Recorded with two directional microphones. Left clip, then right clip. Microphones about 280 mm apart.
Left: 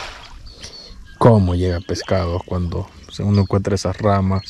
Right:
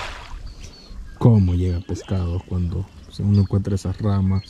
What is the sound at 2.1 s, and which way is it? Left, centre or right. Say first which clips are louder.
Speech: left 14 dB; left.